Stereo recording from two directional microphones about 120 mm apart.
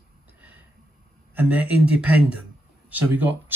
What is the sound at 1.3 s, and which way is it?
Speech, 15° right (ahead or behind).